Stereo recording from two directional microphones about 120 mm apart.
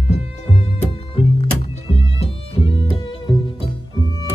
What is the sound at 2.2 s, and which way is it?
Music, 50° left (ahead or behind).